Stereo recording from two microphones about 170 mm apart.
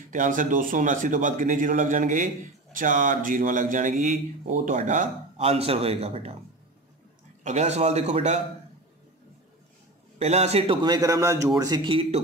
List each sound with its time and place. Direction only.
0.1 s speech: 50° right (ahead or behind)
5.4 s a man's voice: 35° right (ahead or behind)
7.4 s a man's voice: 40° right (ahead or behind)
10.1 s a man's voice: 40° right (ahead or behind)